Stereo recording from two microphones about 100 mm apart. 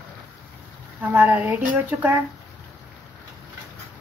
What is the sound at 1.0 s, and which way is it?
Speech, 20° right (ahead or behind).